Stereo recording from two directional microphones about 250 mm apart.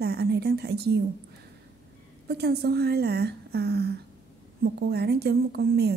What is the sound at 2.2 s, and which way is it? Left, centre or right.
A woman's voice, right.